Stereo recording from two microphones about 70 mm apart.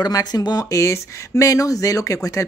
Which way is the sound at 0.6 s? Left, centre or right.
Left.